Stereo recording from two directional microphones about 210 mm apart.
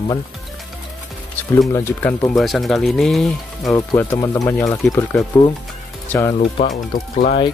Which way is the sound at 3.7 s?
15° left (ahead or behind).